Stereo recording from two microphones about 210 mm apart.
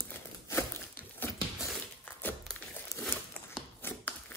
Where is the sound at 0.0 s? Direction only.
10° left (ahead or behind).